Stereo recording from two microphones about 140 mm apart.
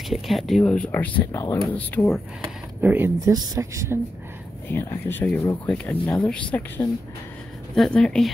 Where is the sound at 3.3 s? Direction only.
25° right (ahead or behind).